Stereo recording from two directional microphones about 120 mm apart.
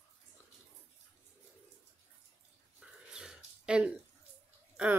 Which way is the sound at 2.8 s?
5° right (ahead or behind).